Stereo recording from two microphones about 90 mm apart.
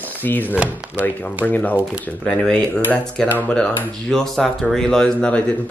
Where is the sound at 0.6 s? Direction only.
15° right (ahead or behind).